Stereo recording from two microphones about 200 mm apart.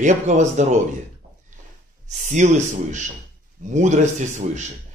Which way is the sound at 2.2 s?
40° right (ahead or behind).